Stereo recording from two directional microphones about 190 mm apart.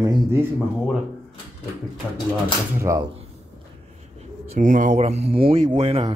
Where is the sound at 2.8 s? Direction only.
15° right (ahead or behind).